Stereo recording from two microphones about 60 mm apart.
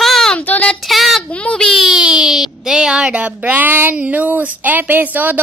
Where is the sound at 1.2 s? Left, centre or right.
Centre.